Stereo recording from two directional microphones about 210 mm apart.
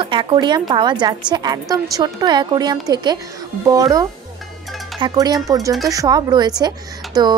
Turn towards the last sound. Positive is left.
turn(degrees=-20)  # may be behind; listen again after turning